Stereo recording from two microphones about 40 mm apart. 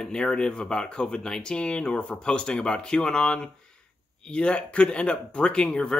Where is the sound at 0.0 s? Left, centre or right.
Centre.